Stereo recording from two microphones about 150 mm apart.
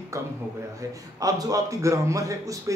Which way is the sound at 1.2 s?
25° right (ahead or behind).